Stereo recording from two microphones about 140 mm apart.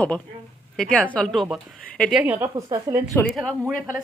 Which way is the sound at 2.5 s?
30° right (ahead or behind).